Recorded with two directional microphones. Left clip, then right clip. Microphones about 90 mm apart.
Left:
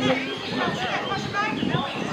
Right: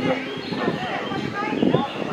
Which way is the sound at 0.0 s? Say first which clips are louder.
Even; 45° left (ahead or behind).